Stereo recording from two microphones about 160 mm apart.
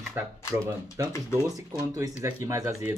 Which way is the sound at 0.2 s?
10° right (ahead or behind).